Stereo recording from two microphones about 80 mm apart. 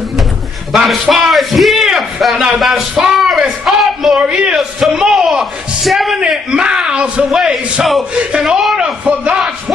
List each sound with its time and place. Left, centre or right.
0.8 s speech: centre